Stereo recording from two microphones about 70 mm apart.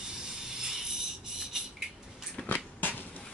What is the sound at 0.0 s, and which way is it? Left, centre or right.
Rub, centre.